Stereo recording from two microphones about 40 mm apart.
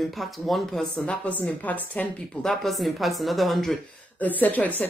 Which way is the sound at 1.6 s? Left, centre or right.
Left.